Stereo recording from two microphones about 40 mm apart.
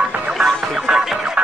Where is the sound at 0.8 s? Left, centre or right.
Right.